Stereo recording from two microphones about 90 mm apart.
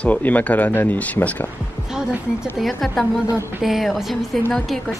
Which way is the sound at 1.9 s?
10° right (ahead or behind).